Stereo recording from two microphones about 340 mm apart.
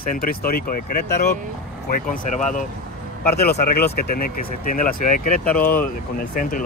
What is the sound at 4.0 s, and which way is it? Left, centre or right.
Speech, left.